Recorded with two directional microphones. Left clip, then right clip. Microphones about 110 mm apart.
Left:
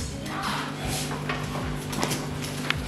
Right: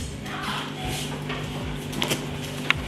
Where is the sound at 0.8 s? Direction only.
15° left (ahead or behind).